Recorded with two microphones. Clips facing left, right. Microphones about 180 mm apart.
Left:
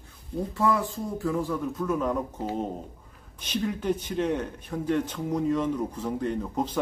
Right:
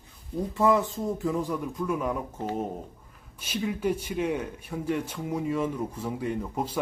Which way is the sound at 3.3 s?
5° right (ahead or behind).